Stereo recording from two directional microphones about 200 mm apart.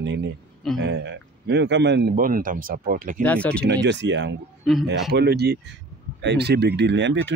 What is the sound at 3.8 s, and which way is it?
Speech, 65° right (ahead or behind).